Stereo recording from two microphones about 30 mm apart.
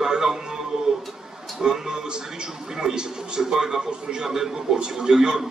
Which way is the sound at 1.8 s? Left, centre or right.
Right.